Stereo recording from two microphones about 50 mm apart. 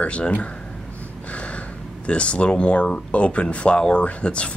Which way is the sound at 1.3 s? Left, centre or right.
Left.